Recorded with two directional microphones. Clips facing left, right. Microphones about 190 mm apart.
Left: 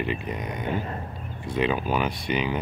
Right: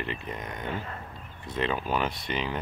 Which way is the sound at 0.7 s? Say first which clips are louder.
Left 7 dB; 30° left (ahead or behind).